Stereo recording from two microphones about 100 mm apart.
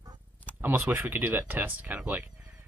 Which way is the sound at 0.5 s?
20° right (ahead or behind).